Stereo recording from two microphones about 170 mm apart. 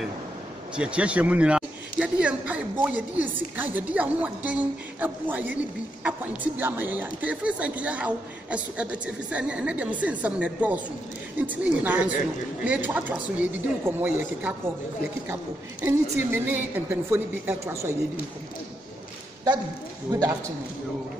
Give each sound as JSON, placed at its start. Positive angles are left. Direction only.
{"t": 0.7, "sound": "a woman's voice", "side_deg": -5}
{"t": 15.8, "sound": "a woman's voice", "side_deg": -10}
{"t": 20.1, "sound": "speech", "side_deg": -20}